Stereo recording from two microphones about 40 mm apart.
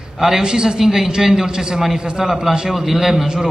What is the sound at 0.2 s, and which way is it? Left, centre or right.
A woman's voice, centre.